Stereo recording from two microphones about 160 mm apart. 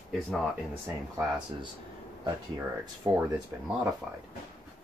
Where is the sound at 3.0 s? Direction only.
20° right (ahead or behind).